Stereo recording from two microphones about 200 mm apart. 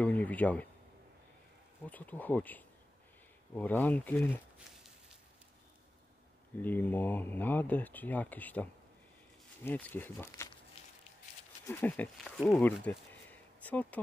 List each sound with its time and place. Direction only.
0.0 s speech: 5° left (ahead or behind)
1.9 s speech: 10° left (ahead or behind)
6.6 s speech: 10° left (ahead or behind)
9.7 s speech: 10° left (ahead or behind)
10.8 s a sound: 30° left (ahead or behind)
11.6 s speech: 10° left (ahead or behind)